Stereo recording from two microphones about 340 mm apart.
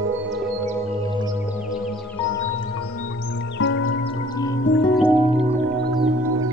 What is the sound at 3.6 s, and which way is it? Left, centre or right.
Music, left.